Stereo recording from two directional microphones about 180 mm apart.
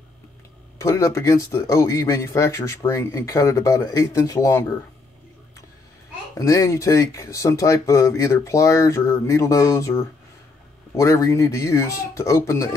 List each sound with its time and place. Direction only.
0.7 s speech: 15° left (ahead or behind)
6.3 s speech: 20° left (ahead or behind)